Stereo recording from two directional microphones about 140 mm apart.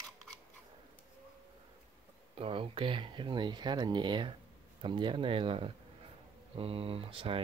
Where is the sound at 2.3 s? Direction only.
40° right (ahead or behind).